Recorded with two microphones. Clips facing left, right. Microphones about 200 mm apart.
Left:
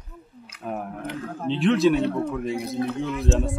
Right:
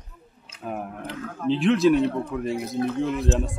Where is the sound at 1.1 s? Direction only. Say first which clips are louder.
Right 3 dB; 30° left (ahead or behind).